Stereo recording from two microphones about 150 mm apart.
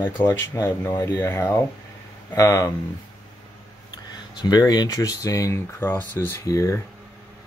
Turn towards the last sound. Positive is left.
turn(degrees=20)  # may be behind; listen again after turning